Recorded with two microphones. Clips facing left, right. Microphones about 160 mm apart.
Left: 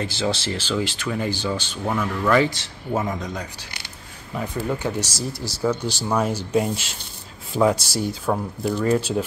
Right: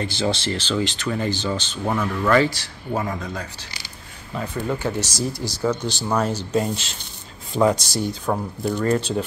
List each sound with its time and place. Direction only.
0.0 s speech: 5° left (ahead or behind)
2.4 s speech: 20° left (ahead or behind)
4.6 s speech: 5° left (ahead or behind)